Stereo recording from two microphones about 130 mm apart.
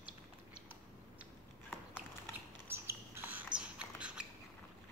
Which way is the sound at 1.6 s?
15° left (ahead or behind).